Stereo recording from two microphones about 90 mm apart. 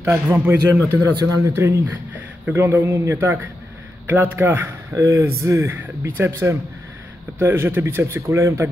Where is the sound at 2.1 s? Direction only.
20° right (ahead or behind).